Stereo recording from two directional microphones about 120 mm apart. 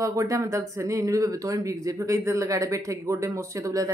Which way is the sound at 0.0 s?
25° right (ahead or behind).